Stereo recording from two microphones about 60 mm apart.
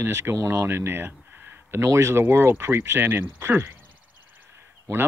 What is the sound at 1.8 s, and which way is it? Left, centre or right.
Speech, right.